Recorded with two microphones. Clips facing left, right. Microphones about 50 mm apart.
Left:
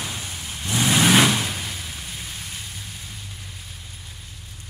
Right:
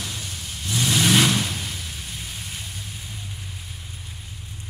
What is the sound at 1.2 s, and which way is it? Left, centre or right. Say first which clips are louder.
Vehicle: even; centre.